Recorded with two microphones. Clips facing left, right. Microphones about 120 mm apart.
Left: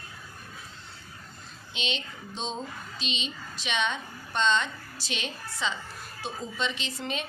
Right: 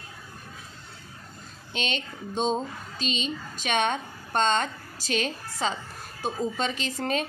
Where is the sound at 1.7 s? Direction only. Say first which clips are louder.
Right 3 dB; 45° right (ahead or behind).